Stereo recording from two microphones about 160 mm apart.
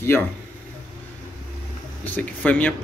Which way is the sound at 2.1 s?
10° left (ahead or behind).